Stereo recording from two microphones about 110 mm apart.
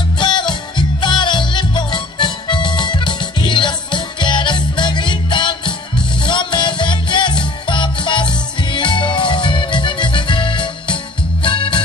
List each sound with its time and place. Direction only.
0.2 s music: 45° left (ahead or behind)